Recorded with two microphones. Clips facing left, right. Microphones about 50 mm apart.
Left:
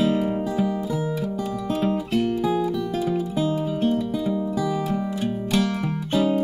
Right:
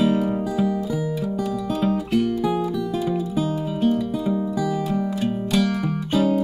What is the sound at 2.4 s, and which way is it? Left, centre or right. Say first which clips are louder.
Music: even; right.